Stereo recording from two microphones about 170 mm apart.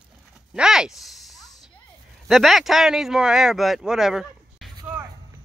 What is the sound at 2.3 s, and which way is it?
Speech, centre (ahead or behind).